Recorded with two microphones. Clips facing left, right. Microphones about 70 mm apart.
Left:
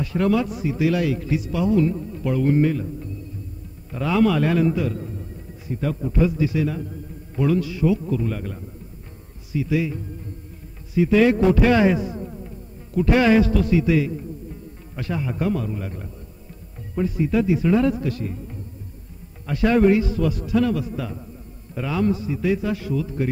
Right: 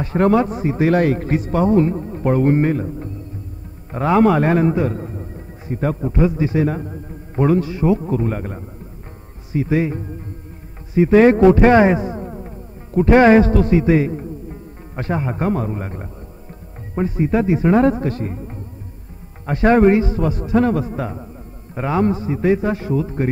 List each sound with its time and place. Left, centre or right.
0.0 s a man's voice: right